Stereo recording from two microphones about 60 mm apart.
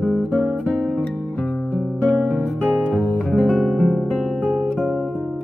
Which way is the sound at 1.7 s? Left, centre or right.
Centre.